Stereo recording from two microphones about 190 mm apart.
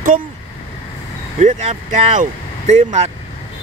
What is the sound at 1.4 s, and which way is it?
Speech, 35° right (ahead or behind).